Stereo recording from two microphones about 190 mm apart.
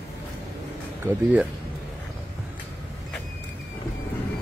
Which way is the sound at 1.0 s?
10° right (ahead or behind).